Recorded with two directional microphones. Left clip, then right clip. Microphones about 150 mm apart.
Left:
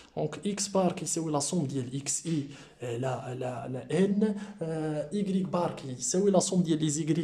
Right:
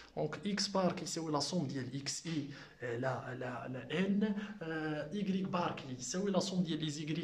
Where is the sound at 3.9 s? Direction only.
35° left (ahead or behind).